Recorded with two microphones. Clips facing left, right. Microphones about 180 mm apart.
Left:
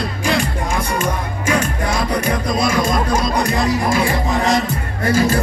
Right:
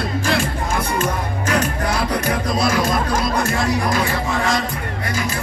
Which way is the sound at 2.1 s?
10° right (ahead or behind).